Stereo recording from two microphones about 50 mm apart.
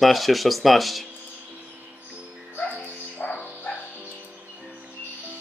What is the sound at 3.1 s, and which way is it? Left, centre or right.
Music, left.